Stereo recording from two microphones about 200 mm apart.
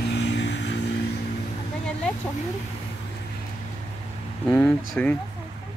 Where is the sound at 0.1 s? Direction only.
65° left (ahead or behind).